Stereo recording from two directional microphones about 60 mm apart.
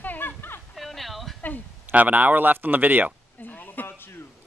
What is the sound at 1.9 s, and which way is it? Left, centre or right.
Speech, right.